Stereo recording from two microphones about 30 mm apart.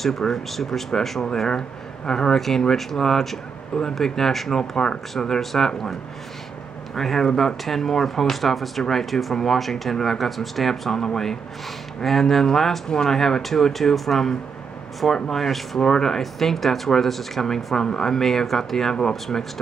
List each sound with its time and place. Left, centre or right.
0.0 s speech: centre
2.3 s speech: centre
4.6 s speech: left
5.4 s speech: centre
7.0 s speech: centre
7.6 s speech: centre
12.0 s speech: centre
15.8 s speech: centre
16.2 s speech: centre
17.7 s speech: centre